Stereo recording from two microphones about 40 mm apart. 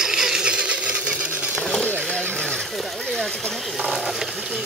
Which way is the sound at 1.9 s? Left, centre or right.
Left.